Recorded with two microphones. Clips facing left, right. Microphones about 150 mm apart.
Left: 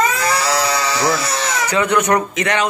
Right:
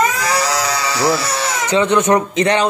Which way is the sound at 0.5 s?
10° right (ahead or behind).